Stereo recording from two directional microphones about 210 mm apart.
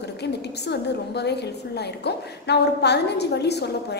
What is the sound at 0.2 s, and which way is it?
A woman's voice, 50° left (ahead or behind).